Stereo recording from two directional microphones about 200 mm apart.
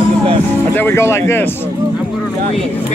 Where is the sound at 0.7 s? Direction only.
10° left (ahead or behind).